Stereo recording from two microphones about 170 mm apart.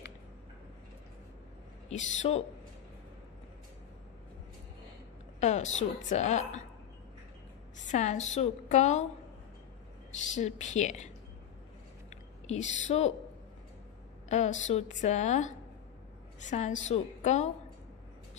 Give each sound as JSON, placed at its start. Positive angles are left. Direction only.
{"t": 1.9, "sound": "a woman's voice", "side_deg": 40}
{"t": 5.4, "sound": "a woman's voice", "side_deg": 45}
{"t": 7.7, "sound": "a woman's voice", "side_deg": 45}
{"t": 10.3, "sound": "a woman's voice", "side_deg": 45}
{"t": 12.4, "sound": "a woman's voice", "side_deg": 40}
{"t": 14.3, "sound": "a woman's voice", "side_deg": 45}